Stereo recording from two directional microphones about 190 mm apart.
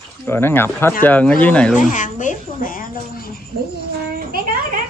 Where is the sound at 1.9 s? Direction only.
40° left (ahead or behind).